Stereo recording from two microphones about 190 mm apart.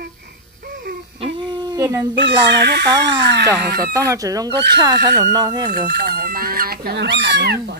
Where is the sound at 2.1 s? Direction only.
70° right (ahead or behind).